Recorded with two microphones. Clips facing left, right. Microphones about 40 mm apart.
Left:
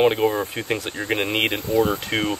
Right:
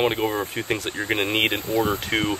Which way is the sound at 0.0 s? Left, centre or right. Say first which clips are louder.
Left 4 dB; centre.